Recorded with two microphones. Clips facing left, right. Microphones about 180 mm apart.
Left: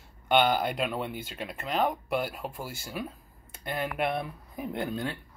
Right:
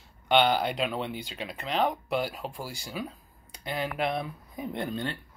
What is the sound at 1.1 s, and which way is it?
Speech, 50° left (ahead or behind).